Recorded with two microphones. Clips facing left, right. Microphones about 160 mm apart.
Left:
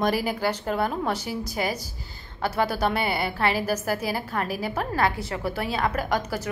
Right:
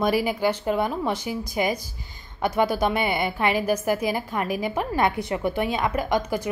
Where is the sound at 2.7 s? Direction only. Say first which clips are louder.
Right 2 dB; 10° right (ahead or behind).